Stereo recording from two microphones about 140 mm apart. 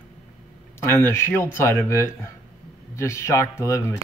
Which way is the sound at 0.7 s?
15° left (ahead or behind).